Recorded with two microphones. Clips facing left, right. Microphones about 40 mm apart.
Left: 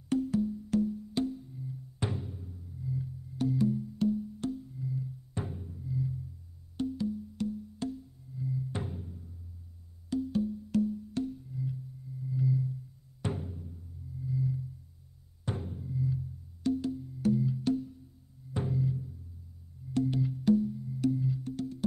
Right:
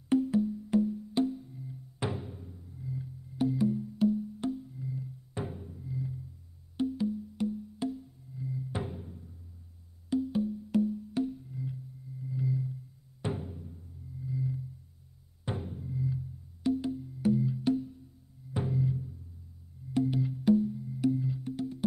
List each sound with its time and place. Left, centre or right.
0.1 s wood block: centre
12.3 s a sound: centre
13.2 s music: centre